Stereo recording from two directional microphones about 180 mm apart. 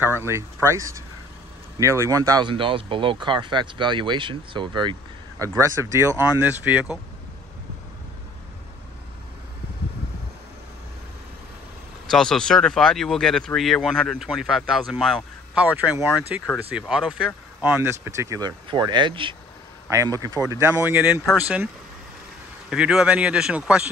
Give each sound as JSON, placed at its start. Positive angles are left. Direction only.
{"t": 0.0, "sound": "speech", "side_deg": -15}
{"t": 12.1, "sound": "speech", "side_deg": 5}
{"t": 22.7, "sound": "speech", "side_deg": -5}